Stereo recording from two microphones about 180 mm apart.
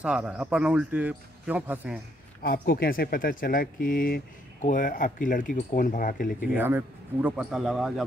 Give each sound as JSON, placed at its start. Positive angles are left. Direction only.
{"t": 0.0, "sound": "speech", "side_deg": -5}
{"t": 2.4, "sound": "speech", "side_deg": 55}
{"t": 6.5, "sound": "speech", "side_deg": -10}